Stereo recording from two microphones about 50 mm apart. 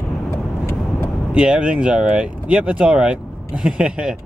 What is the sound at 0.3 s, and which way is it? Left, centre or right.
Vehicle, left.